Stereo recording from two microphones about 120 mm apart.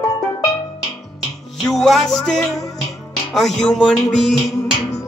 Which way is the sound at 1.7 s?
Centre (ahead or behind).